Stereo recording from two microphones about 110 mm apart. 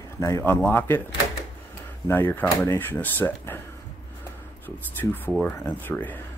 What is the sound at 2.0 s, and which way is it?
Speech, 15° left (ahead or behind).